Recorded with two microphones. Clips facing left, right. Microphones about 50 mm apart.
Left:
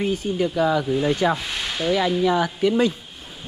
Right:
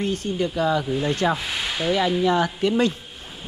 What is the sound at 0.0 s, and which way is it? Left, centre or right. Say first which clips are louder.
Speech: left 2 dB; centre.